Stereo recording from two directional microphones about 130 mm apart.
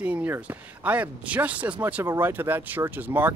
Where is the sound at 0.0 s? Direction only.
10° right (ahead or behind).